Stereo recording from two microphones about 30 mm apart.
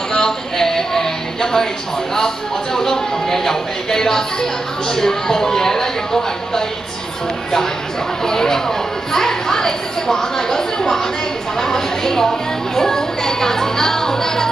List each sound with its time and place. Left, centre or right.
0.1 s a sound: centre
2.1 s speech: centre
8.3 s speech: centre